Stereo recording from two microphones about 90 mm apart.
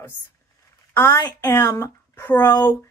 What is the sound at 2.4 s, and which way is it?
Speech, 50° left (ahead or behind).